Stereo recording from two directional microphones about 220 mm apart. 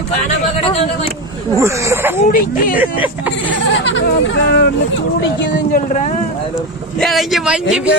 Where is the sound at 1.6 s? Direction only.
15° right (ahead or behind).